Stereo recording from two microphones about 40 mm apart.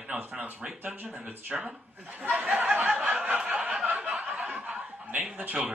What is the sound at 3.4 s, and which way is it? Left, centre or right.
Snicker, right.